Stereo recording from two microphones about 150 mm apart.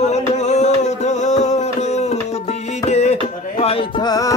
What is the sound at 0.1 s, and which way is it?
Music, 50° left (ahead or behind).